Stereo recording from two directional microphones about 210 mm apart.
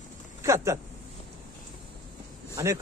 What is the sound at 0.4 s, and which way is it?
Speech, 15° right (ahead or behind).